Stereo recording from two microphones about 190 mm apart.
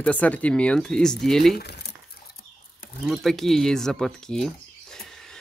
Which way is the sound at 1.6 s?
60° left (ahead or behind).